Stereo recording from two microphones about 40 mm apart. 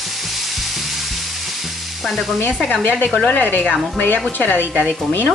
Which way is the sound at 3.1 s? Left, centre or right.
Left.